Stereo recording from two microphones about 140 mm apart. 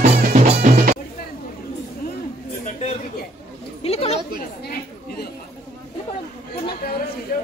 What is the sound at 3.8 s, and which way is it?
Chatter, 45° left (ahead or behind).